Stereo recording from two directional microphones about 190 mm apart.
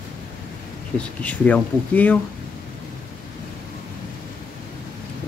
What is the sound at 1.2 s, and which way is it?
Speech, 5° left (ahead or behind).